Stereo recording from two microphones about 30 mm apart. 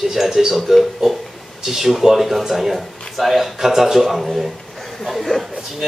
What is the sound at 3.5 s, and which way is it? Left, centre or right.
Speech, centre.